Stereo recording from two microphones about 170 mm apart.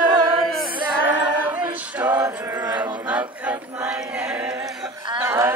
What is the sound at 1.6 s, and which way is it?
Music, 10° right (ahead or behind).